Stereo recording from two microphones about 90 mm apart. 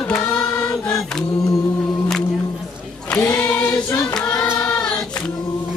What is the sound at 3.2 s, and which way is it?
Choir, 20° left (ahead or behind).